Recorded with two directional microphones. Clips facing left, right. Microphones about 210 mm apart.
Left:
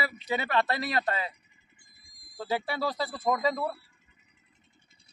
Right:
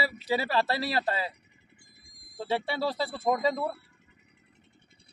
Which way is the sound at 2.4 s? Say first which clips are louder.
Right 1 dB; 25° right (ahead or behind).